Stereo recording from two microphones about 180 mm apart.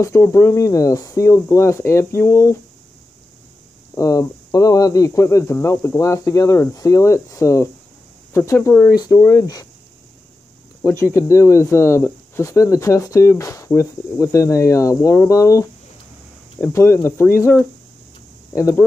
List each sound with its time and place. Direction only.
0.0 s speech: 15° left (ahead or behind)
3.9 s speech: 20° left (ahead or behind)
10.8 s speech: 15° left (ahead or behind)
18.6 s speech: 15° left (ahead or behind)